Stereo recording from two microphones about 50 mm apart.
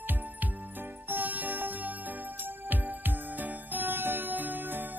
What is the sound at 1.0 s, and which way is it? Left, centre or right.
Music, right.